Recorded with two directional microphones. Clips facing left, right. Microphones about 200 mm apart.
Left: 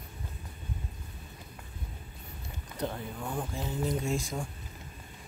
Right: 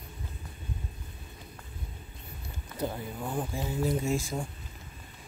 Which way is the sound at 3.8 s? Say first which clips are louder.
Right 2 dB; 5° right (ahead or behind).